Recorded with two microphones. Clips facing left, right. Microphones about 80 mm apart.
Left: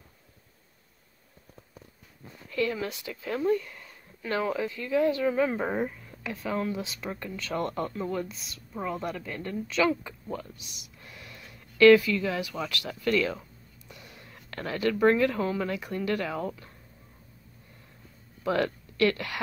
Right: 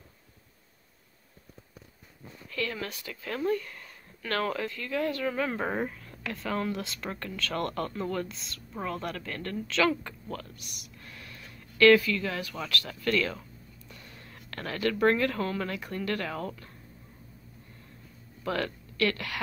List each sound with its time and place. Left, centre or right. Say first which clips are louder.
2.5 s a woman's voice: left 5 dB; left
5.5 s speech: left 2 dB; centre
10.5 s speech: even; right
11.0 s a sound: left 1 dB; left
15.0 s a woman's voice: left 3 dB; left
18.4 s speech: left 4 dB; left